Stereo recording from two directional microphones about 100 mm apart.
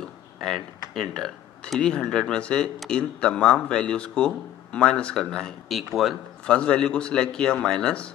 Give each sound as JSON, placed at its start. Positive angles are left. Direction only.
{"t": 0.0, "sound": "speech", "side_deg": 5}